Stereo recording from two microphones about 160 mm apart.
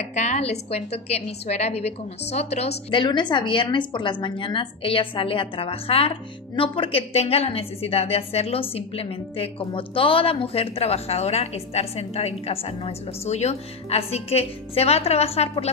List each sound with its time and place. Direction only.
0.1 s a woman's voice: 45° left (ahead or behind)
2.9 s a woman's voice: 30° left (ahead or behind)